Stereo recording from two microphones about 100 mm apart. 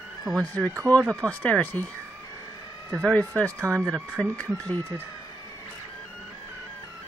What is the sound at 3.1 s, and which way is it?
Speech, 10° left (ahead or behind).